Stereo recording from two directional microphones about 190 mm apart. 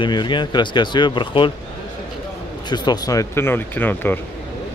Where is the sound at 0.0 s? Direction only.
25° left (ahead or behind).